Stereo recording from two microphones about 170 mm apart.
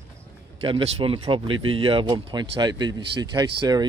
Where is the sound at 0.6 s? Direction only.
35° right (ahead or behind).